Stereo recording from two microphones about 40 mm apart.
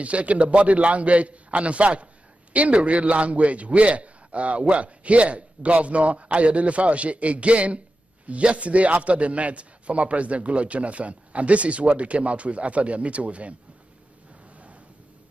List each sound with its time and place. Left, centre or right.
0.0 s a man's voice: right